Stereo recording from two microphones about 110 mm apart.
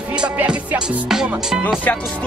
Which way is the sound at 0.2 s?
10° right (ahead or behind).